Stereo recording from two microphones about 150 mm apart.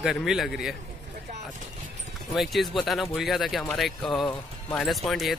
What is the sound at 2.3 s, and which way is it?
Speech, centre (ahead or behind).